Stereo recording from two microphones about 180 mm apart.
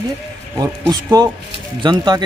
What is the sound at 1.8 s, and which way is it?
Speech, 25° right (ahead or behind).